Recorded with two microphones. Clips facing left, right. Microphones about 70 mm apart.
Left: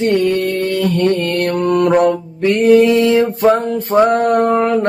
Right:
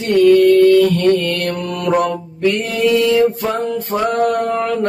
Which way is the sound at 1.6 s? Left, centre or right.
Left.